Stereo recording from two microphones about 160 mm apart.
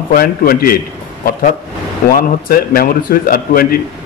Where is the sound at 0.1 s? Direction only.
65° left (ahead or behind).